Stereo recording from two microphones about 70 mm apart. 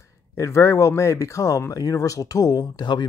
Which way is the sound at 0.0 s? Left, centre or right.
Left.